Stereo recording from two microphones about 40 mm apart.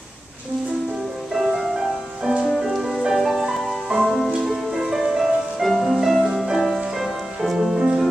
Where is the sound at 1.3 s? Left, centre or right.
Centre.